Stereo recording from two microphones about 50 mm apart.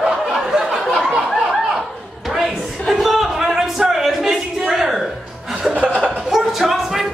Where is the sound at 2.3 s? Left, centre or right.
Centre.